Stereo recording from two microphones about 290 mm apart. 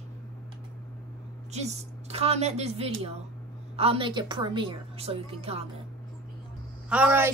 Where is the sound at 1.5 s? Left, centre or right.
Right.